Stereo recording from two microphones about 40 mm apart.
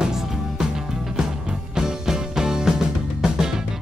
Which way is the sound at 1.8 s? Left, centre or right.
Centre.